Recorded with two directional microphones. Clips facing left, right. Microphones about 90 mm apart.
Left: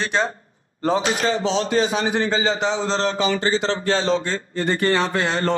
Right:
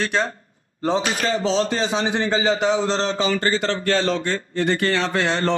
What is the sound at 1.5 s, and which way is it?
Speech, 30° right (ahead or behind).